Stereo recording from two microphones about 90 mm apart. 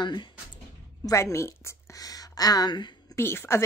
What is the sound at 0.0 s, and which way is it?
Speech, 55° left (ahead or behind).